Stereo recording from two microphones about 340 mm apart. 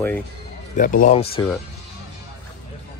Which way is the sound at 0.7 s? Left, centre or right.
Left.